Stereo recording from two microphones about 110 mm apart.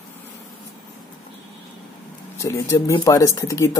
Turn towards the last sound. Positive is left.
turn(degrees=30)  # may be behind; listen again after turning